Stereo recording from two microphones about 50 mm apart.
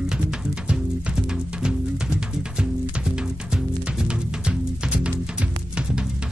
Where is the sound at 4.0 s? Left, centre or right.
Centre.